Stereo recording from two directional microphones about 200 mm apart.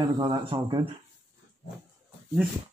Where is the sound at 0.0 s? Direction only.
20° right (ahead or behind).